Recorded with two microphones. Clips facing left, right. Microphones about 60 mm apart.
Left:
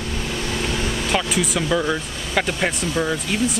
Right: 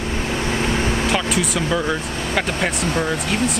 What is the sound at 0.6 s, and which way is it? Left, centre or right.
Vehicle, right.